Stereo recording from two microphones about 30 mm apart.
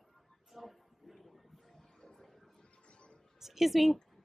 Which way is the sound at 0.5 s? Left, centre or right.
Centre.